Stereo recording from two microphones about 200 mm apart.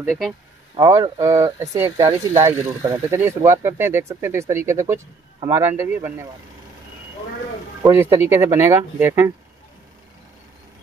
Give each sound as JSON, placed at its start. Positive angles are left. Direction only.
{"t": 0.7, "sound": "speech", "side_deg": -20}
{"t": 7.8, "sound": "speech", "side_deg": -15}